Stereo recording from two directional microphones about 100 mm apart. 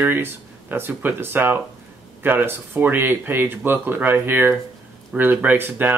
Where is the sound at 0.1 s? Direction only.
20° right (ahead or behind).